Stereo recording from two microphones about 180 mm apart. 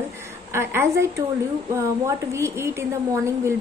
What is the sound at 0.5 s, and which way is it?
Speech, 15° right (ahead or behind).